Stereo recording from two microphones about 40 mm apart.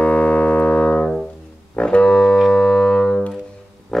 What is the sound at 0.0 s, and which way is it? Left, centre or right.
Music, left.